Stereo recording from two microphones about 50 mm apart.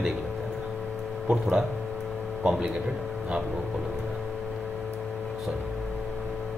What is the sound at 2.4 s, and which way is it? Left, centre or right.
Speech, centre.